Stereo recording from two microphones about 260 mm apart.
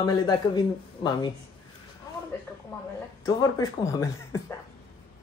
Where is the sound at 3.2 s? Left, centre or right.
Centre.